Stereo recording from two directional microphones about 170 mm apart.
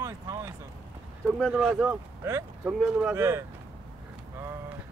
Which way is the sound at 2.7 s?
5° right (ahead or behind).